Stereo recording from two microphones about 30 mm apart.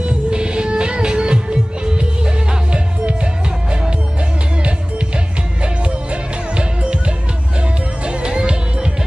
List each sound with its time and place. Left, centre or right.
0.0 s music: right
6.5 s music: right
8.2 s music: right